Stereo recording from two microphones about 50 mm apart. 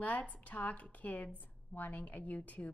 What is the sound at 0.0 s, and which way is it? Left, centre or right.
A woman's voice, left.